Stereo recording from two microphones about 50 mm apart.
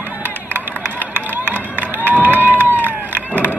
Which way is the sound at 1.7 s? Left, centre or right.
Right.